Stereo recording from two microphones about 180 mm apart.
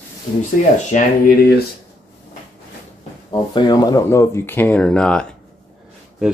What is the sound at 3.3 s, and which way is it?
Speech, 25° left (ahead or behind).